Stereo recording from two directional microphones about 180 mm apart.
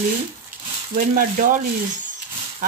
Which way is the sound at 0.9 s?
45° right (ahead or behind).